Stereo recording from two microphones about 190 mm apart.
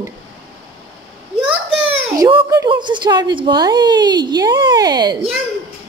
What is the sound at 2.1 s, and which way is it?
A woman's voice, 15° right (ahead or behind).